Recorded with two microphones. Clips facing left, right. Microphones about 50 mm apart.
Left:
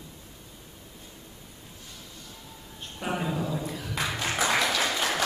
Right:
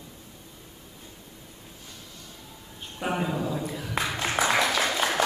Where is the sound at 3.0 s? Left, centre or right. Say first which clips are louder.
Right 2 dB; centre.